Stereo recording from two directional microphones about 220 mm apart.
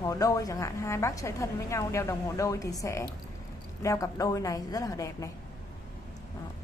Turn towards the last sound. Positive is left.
turn(degrees=15)  # may be behind; listen again after turning